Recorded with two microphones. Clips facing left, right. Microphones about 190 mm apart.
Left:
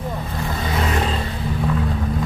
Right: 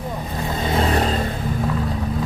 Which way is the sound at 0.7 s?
30° right (ahead or behind).